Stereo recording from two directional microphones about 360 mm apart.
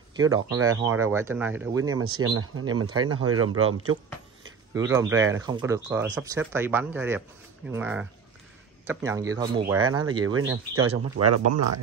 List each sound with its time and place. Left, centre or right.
0.1 s speech: centre
0.6 s speech: right
1.0 s speech: centre
2.0 s speech: right
4.7 s speech: centre
10.2 s speech: right